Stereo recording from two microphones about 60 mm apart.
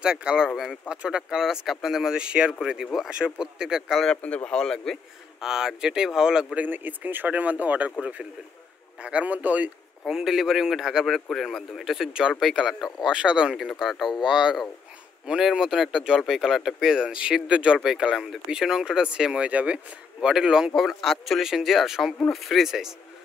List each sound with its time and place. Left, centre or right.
0.0 s speech: centre
4.2 s speech: left
5.4 s speech: centre
6.6 s speech: right
9.0 s speech: right
10.0 s speech: centre
13.6 s speech: centre; by 19.8 s right
20.2 s speech: centre
20.7 s speech: centre